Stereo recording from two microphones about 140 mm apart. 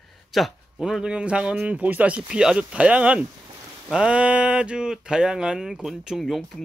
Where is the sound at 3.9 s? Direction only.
5° right (ahead or behind).